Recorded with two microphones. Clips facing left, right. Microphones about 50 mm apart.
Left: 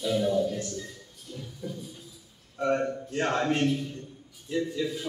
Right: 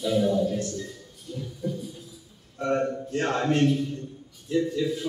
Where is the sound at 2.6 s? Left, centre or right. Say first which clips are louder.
Right 1 dB; centre.